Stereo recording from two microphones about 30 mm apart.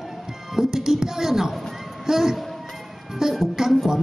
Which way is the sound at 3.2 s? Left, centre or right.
Centre.